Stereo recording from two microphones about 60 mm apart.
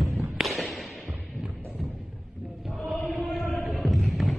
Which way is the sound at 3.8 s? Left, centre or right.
Centre.